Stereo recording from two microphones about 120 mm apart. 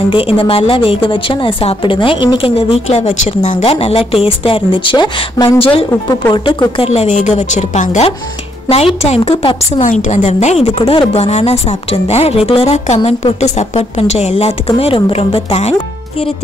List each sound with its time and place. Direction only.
0.1 s a woman's voice: 50° left (ahead or behind); by 3.6 s 70° left (ahead or behind)
3.6 s a woman's voice: 55° left (ahead or behind)
6.8 s a woman's voice: 65° left (ahead or behind)
8.6 s a woman's voice: 55° left (ahead or behind)
9.8 s a woman's voice: 90° left; by 15.7 s 55° left (ahead or behind)